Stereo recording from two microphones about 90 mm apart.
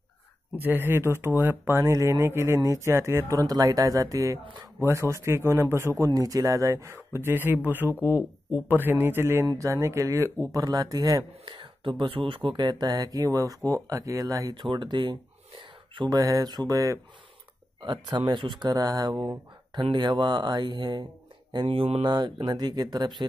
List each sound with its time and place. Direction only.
0.6 s speech: 25° right (ahead or behind); by 7.0 s 40° right (ahead or behind)
7.1 s speech: 25° right (ahead or behind); by 11.2 s 45° right (ahead or behind)
11.4 s speech: 65° right (ahead or behind)
12.5 s speech: 50° right (ahead or behind)
14.5 s speech: 60° right (ahead or behind)
16.1 s speech: 45° right (ahead or behind)
18.0 s speech: 55° right (ahead or behind)
18.7 s speech: 45° right (ahead or behind)
21.6 s speech: 90° right
22.0 s speech: 50° right (ahead or behind)